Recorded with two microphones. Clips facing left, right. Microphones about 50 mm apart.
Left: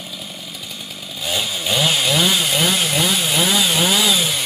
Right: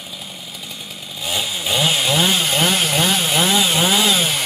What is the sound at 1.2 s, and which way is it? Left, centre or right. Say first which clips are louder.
Chainsaw: even; centre.